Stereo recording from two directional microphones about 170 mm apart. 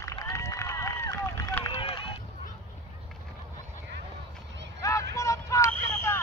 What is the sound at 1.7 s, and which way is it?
Run, 30° left (ahead or behind).